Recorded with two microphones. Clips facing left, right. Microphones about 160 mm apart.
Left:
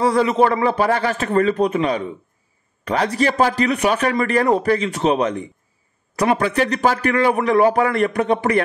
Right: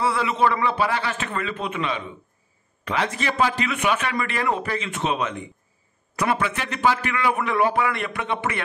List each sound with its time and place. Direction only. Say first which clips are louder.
0.0 s speech: left 6 dB; 40° left (ahead or behind)